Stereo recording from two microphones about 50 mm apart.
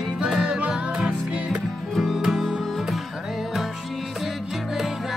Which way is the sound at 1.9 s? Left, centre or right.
Centre.